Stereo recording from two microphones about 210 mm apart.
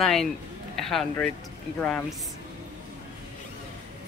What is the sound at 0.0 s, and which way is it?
Speech, centre (ahead or behind).